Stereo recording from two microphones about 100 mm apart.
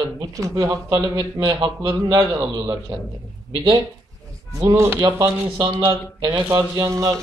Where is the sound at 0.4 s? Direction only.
35° right (ahead or behind).